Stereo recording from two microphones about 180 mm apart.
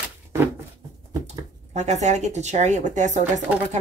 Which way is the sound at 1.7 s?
40° right (ahead or behind).